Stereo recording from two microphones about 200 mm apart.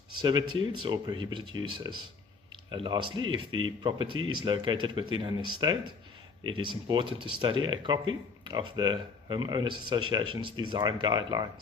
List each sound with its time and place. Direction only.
0.2 s speech: 20° right (ahead or behind)
3.1 s speech: 90° right
3.8 s speech: 25° right (ahead or behind)
6.9 s speech: 25° right (ahead or behind)